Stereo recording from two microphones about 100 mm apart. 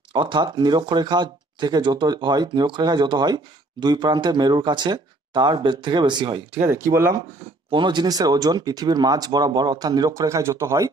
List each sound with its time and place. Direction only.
0.1 s speech: 50° right (ahead or behind)
6.6 s speech: 30° right (ahead or behind)
7.7 s speech: 50° right (ahead or behind); by 10.9 s 30° right (ahead or behind)